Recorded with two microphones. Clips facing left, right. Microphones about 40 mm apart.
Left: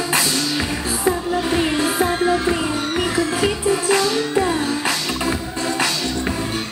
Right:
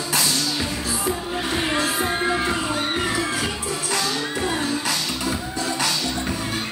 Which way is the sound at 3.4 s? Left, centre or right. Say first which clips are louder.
Left 8 dB; left.